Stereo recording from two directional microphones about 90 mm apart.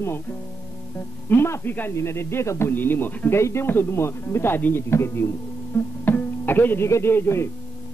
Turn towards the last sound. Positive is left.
turn(degrees=25)  # may be behind; listen again after turning